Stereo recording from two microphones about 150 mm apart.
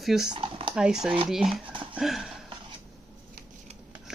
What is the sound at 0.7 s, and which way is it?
Speech, 5° right (ahead or behind).